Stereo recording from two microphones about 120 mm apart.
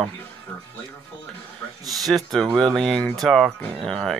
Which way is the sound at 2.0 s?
Centre (ahead or behind).